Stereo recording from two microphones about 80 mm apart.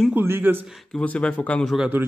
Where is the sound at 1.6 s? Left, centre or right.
Centre.